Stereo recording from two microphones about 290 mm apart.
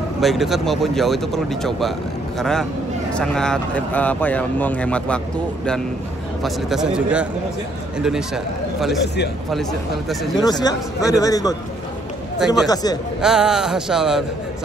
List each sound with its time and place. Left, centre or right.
0.2 s speech: centre
6.4 s speech: centre
9.0 s speech: left
9.5 s speech: centre
10.3 s speech: centre
12.4 s speech: centre
12.6 s speech: centre
13.2 s speech: centre